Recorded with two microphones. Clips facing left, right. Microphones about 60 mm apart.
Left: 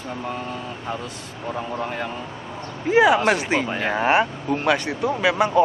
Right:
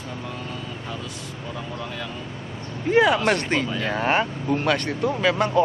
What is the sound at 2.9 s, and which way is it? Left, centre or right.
Speech, centre.